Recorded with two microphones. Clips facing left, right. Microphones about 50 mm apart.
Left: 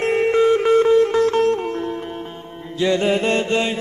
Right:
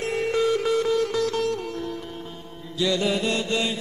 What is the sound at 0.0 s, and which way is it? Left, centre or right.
Music, left.